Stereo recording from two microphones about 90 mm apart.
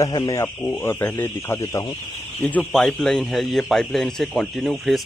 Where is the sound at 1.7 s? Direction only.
50° left (ahead or behind).